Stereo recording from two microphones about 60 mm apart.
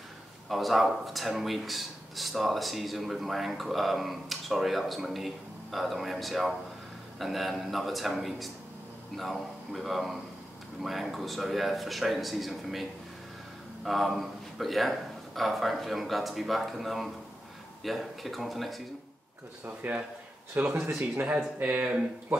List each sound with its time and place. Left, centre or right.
0.5 s speech: centre
13.8 s speech: centre
19.6 s speech: right